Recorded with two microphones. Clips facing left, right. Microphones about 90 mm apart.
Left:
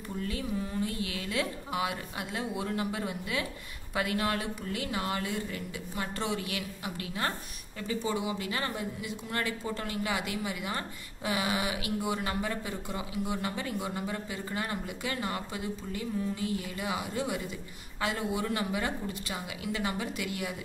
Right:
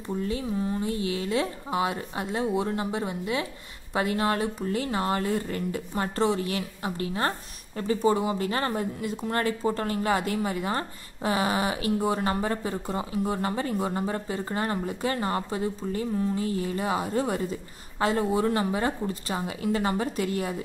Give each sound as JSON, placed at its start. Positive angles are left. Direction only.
{"t": 0.2, "sound": "speech", "side_deg": -30}